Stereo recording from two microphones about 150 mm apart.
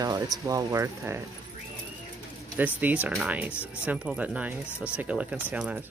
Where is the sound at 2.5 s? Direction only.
10° right (ahead or behind).